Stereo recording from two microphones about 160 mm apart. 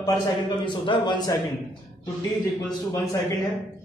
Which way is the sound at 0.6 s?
30° left (ahead or behind).